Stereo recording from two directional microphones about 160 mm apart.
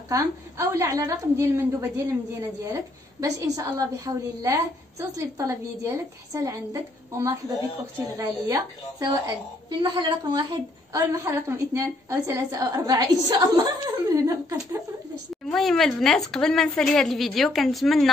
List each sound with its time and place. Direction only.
0.1 s a woman's voice: 20° right (ahead or behind)
15.4 s a woman's voice: centre (ahead or behind)